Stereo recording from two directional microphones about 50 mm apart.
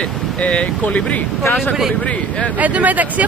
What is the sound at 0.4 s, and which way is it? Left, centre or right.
Speech, left.